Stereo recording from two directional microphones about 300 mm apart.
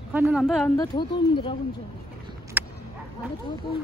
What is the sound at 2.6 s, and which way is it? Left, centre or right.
Dog, centre.